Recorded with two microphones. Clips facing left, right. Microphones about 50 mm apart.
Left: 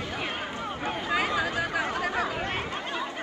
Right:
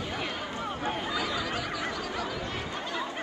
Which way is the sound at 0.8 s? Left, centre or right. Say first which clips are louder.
Left 5 dB; left.